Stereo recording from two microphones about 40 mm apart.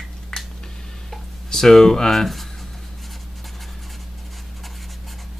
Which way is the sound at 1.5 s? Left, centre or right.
Centre.